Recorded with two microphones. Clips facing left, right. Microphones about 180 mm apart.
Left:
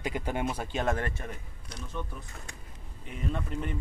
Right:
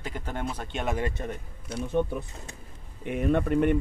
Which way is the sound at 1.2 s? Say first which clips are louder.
Right 6 dB; 25° right (ahead or behind).